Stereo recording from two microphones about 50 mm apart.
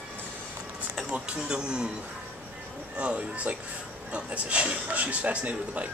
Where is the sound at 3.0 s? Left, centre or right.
Right.